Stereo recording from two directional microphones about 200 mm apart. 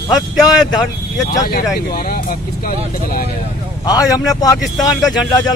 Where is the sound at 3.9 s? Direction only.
20° left (ahead or behind).